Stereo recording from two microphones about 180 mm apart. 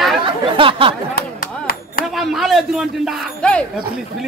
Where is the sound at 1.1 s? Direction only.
55° left (ahead or behind).